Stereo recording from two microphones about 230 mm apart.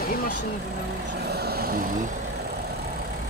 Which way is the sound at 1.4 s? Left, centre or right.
Right.